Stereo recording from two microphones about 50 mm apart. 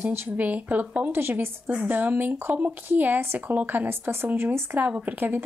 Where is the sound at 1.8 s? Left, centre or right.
Right.